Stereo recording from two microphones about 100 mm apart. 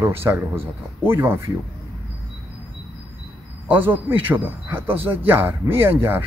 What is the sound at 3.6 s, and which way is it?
Speech, 15° right (ahead or behind).